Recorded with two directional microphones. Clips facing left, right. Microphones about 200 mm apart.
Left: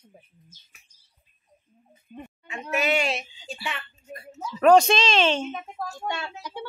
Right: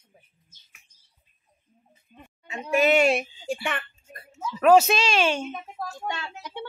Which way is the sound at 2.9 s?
50° right (ahead or behind).